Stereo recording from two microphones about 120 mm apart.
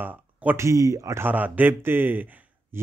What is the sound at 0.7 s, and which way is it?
Speech, 25° right (ahead or behind).